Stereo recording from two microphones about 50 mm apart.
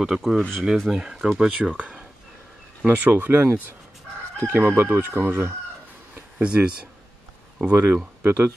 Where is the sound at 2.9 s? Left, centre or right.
Right.